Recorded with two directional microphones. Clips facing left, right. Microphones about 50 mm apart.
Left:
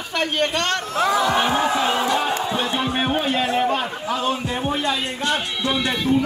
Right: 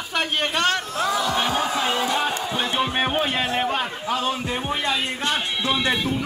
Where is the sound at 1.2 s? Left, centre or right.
Left.